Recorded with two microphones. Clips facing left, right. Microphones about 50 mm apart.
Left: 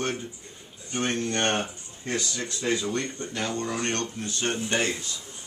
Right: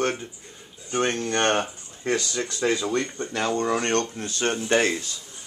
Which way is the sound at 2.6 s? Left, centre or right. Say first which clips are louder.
Right 3 dB; right.